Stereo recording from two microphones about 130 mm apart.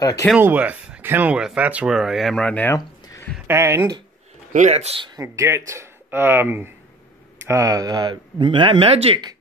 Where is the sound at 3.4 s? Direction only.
20° right (ahead or behind).